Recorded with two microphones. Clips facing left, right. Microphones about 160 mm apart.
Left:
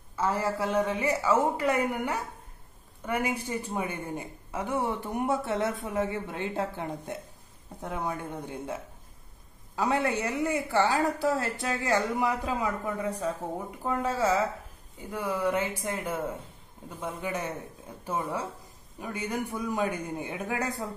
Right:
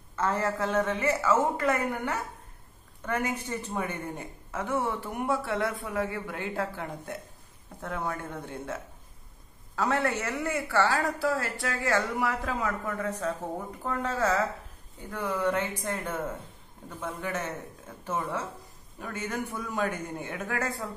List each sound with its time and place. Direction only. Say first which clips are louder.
0.1 s a woman's voice: even; 10° left (ahead or behind)